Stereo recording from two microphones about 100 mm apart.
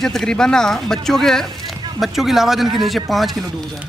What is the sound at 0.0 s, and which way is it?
Speech, 5° left (ahead or behind).